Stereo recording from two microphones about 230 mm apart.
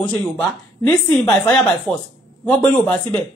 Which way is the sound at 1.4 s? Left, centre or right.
Centre.